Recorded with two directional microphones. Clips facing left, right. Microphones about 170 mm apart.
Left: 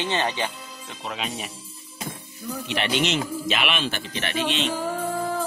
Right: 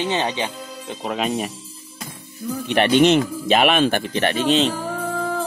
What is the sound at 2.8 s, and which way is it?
Speech, 55° right (ahead or behind).